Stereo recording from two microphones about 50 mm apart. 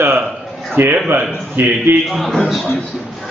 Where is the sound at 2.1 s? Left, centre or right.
Centre.